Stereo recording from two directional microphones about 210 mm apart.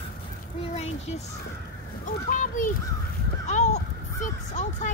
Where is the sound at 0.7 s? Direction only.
30° left (ahead or behind).